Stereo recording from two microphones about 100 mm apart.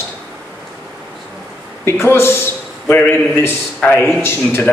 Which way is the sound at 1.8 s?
25° left (ahead or behind).